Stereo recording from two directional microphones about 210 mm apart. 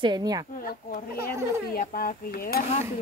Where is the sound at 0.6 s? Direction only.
40° left (ahead or behind).